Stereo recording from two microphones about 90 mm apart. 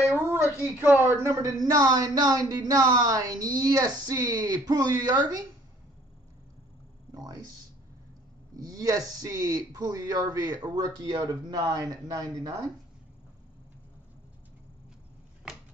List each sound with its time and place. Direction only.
0.7 s speech: 20° right (ahead or behind)
1.3 s speech: 40° right (ahead or behind)
7.2 s a sound: 45° right (ahead or behind)
8.6 s speech: 45° right (ahead or behind)